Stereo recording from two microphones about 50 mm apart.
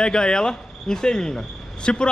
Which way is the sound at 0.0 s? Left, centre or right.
Centre.